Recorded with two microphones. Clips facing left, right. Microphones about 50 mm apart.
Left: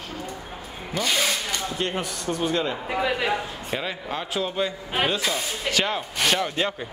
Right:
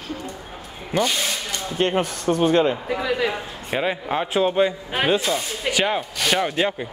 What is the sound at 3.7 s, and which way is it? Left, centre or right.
Speech, right.